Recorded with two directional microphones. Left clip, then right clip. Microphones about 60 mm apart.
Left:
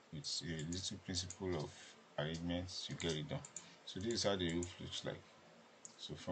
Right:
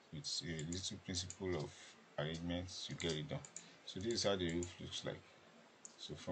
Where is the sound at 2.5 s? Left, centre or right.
Centre.